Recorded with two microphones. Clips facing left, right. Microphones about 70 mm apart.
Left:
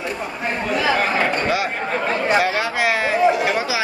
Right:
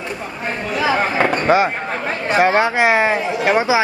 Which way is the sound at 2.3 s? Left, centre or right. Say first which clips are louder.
Right 8 dB; right.